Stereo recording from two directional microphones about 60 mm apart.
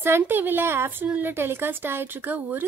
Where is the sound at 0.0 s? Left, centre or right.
Right.